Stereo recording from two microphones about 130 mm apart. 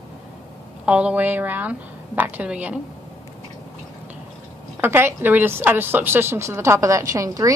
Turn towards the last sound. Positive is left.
turn(degrees=-25)  # may be behind; listen again after turning